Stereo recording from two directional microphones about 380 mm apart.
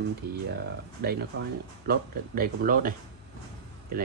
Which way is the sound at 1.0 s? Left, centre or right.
Right.